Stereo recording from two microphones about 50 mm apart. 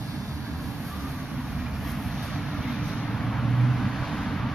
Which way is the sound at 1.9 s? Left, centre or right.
Centre.